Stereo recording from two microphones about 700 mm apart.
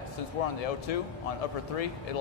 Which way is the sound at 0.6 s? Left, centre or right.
Left.